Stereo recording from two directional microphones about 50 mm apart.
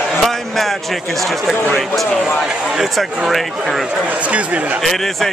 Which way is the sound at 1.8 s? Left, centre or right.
Centre.